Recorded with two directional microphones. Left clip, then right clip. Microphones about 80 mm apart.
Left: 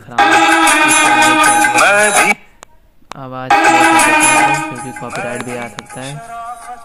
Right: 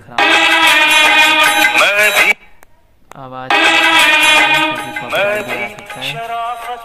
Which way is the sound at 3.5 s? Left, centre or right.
Centre.